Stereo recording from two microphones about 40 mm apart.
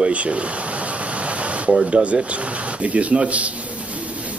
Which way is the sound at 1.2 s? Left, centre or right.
Right.